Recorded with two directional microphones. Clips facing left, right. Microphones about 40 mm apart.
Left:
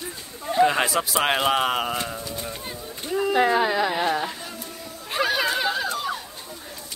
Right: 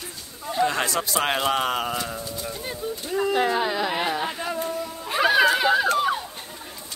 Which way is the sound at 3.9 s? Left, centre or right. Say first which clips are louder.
Left 2 dB; centre.